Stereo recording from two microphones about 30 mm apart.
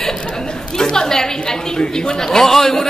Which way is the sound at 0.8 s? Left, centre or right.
Left.